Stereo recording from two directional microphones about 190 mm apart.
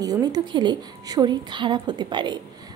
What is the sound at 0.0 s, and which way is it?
A woman's voice, 20° right (ahead or behind).